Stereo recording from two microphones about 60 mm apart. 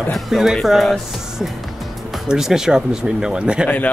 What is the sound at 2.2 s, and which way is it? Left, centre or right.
Speech, centre.